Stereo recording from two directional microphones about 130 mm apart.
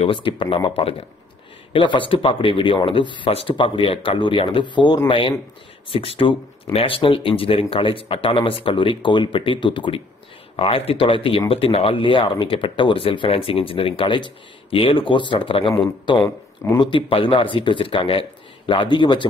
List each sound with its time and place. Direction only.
0.0 s speech: 40° left (ahead or behind)